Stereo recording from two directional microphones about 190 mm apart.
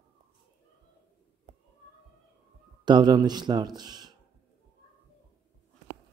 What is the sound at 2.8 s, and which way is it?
Speech, 25° right (ahead or behind).